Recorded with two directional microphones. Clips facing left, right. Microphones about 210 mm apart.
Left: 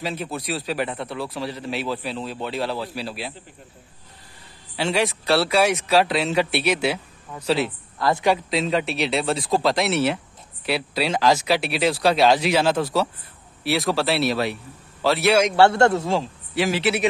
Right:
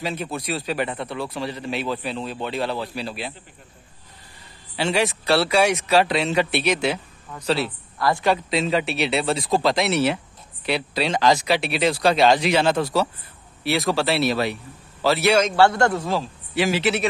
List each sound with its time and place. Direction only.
0.0 s speech: centre (ahead or behind)
4.7 s speech: centre (ahead or behind); by 8.4 s 15° left (ahead or behind)
8.5 s speech: centre (ahead or behind)
15.4 s a man's voice: 25° left (ahead or behind)
16.5 s speech: centre (ahead or behind)